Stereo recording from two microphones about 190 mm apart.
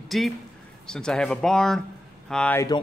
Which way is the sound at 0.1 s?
Centre (ahead or behind).